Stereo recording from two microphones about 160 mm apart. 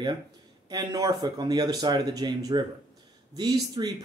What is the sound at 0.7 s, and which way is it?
Speech, 25° right (ahead or behind).